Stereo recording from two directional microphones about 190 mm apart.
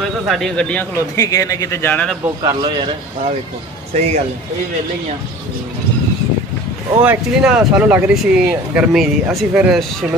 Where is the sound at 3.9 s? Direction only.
35° right (ahead or behind).